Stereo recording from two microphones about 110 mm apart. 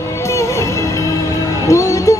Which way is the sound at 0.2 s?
25° left (ahead or behind).